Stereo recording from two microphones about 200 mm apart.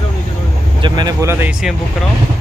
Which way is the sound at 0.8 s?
20° right (ahead or behind).